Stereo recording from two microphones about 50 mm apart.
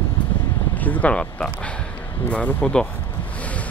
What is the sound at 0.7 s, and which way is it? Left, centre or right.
Speech, left.